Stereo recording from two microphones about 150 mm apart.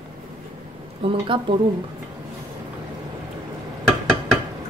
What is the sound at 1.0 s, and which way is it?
Speech, 35° right (ahead or behind).